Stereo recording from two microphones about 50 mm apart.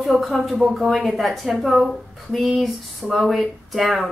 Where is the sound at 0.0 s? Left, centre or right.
Centre.